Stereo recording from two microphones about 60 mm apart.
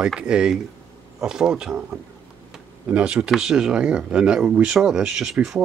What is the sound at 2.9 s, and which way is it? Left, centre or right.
Speech, centre.